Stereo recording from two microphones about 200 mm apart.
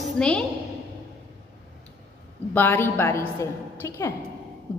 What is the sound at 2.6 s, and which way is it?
A woman's voice, 10° left (ahead or behind).